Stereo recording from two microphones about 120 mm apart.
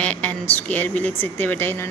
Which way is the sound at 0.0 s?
10° left (ahead or behind).